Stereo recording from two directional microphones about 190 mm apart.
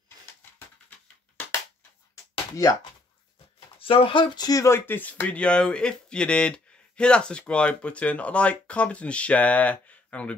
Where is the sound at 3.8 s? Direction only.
30° left (ahead or behind); by 10.3 s 5° left (ahead or behind).